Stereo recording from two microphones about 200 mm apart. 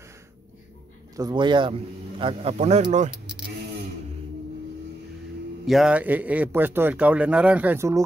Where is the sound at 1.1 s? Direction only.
20° right (ahead or behind).